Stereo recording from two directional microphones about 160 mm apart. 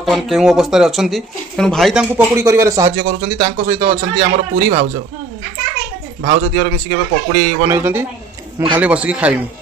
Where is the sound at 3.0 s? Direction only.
55° right (ahead or behind).